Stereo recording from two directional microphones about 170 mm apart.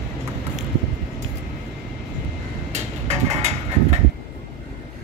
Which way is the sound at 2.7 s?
40° right (ahead or behind).